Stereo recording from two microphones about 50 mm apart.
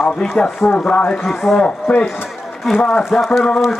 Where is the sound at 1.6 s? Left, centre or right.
Left.